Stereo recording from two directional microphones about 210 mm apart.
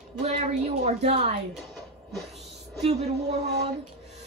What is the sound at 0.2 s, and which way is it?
A woman's voice, 30° right (ahead or behind).